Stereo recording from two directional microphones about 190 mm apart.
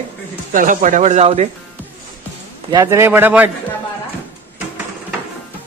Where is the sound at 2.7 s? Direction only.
15° right (ahead or behind).